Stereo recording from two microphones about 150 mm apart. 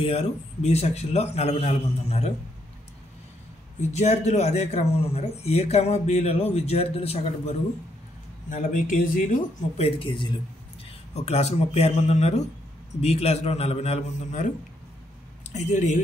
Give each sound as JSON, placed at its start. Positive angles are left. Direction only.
{"t": 0.0, "sound": "speech", "side_deg": 45}
{"t": 3.9, "sound": "speech", "side_deg": 50}
{"t": 8.5, "sound": "a man's voice", "side_deg": 60}
{"t": 9.8, "sound": "speech", "side_deg": 35}
{"t": 15.5, "sound": "speech", "side_deg": 50}